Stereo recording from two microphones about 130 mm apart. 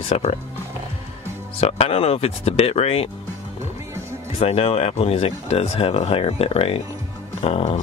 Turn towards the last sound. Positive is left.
turn(degrees=50)  # may be behind; listen again after turning